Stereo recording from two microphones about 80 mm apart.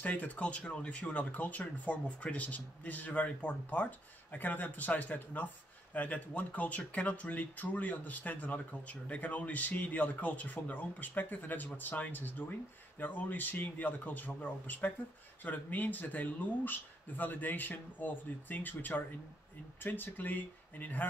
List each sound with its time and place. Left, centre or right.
0.0 s speech: centre